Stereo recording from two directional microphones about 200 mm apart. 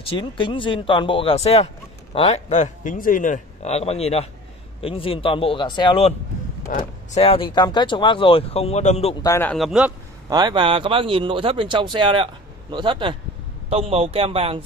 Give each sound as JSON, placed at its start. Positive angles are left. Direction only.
{"t": 0.1, "sound": "speech", "side_deg": 25}
{"t": 9.2, "sound": "speech", "side_deg": 10}
{"t": 10.3, "sound": "speech", "side_deg": -25}